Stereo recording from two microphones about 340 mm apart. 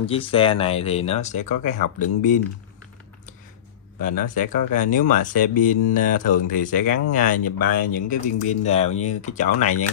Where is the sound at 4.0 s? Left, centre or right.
Left.